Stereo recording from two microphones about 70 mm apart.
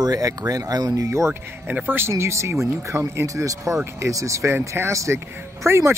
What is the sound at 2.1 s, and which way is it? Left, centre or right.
Speech, right.